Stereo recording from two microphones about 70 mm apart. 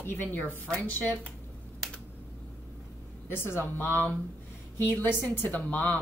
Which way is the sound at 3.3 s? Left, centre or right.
Left.